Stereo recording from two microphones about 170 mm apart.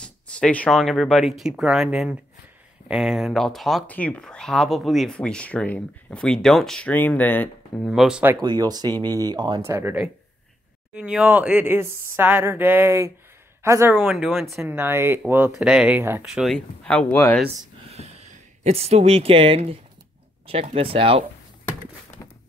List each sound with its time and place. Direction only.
0.0 s speech: 5° left (ahead or behind)
7.8 s speech: centre (ahead or behind)
8.4 s speech: 25° right (ahead or behind)
9.7 s speech: 15° right (ahead or behind)
11.0 s a man's voice: 10° right (ahead or behind)
14.1 s speech: centre (ahead or behind)
14.6 s speech: 15° right (ahead or behind); by 17.4 s 15° left (ahead or behind)
17.8 s speech: 40° right (ahead or behind)